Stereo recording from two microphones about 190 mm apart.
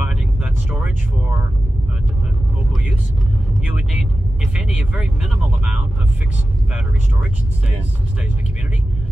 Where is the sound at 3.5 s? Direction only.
5° right (ahead or behind).